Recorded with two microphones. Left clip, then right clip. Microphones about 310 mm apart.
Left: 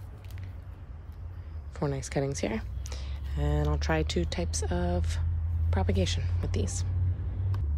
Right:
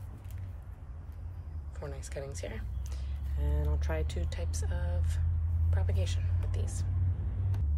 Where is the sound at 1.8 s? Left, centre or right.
Centre.